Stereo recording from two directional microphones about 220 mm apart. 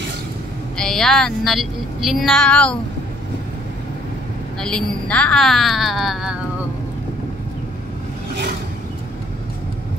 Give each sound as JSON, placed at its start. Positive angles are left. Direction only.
{"t": 0.7, "sound": "speech", "side_deg": 0}
{"t": 4.6, "sound": "speech", "side_deg": 5}